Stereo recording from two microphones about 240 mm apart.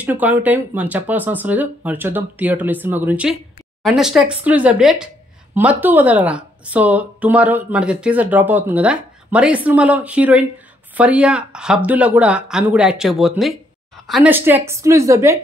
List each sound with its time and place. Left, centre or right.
0.0 s speech: centre